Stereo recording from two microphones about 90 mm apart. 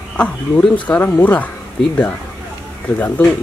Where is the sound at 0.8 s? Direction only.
20° left (ahead or behind).